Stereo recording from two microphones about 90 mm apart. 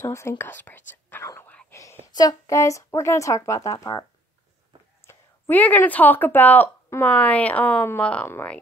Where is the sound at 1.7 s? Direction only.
35° left (ahead or behind).